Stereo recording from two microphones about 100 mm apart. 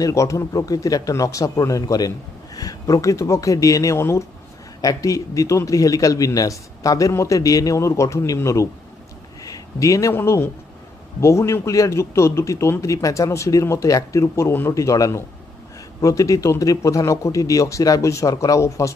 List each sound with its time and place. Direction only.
0.0 s speech: 30° left (ahead or behind)
9.4 s a sound: 35° left (ahead or behind)
10.1 s a man's voice: 25° left (ahead or behind)